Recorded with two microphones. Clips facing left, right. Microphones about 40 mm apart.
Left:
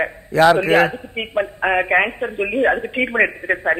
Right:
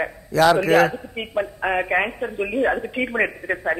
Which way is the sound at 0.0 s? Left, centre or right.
Left.